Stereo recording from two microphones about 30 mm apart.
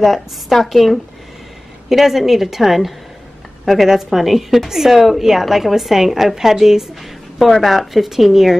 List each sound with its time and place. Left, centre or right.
0.0 s a woman's voice: centre
7.3 s speech: centre